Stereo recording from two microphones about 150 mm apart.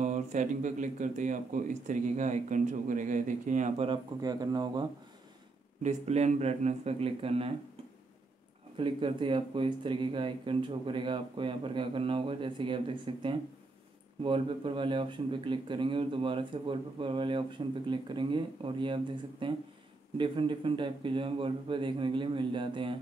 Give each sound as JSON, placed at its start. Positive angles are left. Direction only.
{"t": 0.0, "sound": "speech", "side_deg": -55}
{"t": 3.8, "sound": "speech", "side_deg": -30}
{"t": 5.8, "sound": "speech", "side_deg": -50}
{"t": 8.7, "sound": "speech", "side_deg": -35}